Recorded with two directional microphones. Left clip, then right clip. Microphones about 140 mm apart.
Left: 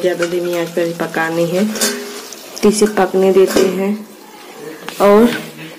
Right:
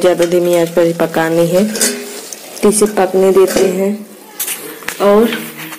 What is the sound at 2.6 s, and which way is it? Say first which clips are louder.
Speech: right 1 dB; 15° right (ahead or behind).